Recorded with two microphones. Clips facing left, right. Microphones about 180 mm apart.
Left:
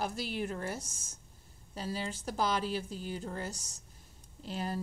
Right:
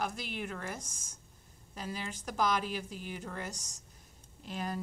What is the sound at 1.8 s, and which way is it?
A woman's voice, 35° left (ahead or behind).